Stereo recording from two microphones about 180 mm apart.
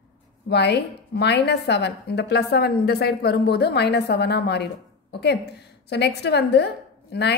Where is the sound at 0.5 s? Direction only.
70° left (ahead or behind).